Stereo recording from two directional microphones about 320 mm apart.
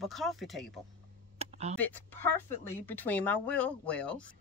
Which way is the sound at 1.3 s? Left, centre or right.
Centre.